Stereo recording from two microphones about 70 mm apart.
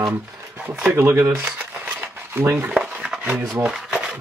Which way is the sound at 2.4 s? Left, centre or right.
Right.